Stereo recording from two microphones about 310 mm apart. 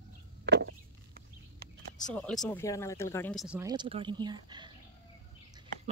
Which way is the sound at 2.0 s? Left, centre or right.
Centre.